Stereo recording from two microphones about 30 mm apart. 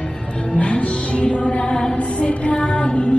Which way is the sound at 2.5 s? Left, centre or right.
Left.